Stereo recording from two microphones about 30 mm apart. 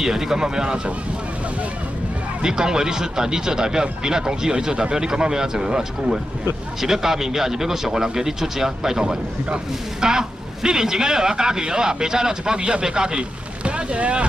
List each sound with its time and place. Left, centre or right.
0.0 s a man's voice: centre
2.4 s a man's voice: right
13.7 s speech: right